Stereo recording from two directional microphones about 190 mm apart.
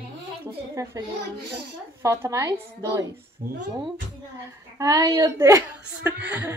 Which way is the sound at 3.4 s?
45° right (ahead or behind).